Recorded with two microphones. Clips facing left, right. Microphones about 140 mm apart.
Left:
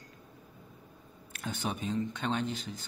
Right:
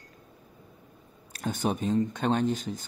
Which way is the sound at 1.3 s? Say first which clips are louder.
Right 7 dB; 40° right (ahead or behind).